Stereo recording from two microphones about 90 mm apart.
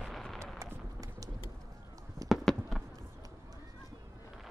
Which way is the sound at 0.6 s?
35° right (ahead or behind).